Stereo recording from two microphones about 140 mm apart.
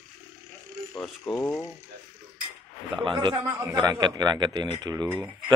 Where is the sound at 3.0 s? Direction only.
35° right (ahead or behind).